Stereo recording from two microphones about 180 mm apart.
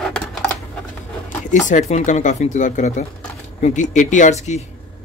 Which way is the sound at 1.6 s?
40° left (ahead or behind).